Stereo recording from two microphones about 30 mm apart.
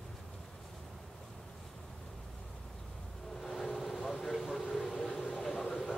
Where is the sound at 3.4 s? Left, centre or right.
Centre.